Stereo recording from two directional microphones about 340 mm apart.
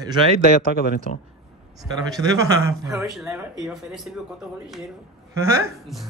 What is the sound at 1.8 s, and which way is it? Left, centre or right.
Speech, centre.